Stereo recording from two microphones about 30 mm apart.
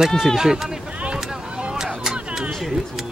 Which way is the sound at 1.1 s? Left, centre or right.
Right.